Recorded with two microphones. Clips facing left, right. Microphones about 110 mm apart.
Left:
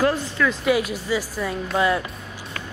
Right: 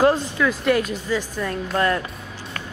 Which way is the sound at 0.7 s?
10° left (ahead or behind).